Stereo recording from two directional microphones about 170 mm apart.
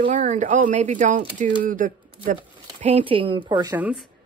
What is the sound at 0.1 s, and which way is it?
Speech, 50° right (ahead or behind).